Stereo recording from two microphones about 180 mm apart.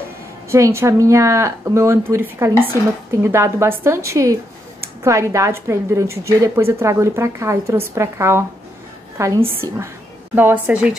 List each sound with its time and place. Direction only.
0.5 s a woman's voice: 15° right (ahead or behind)